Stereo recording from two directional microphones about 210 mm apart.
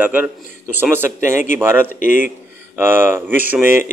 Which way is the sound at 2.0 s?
40° left (ahead or behind).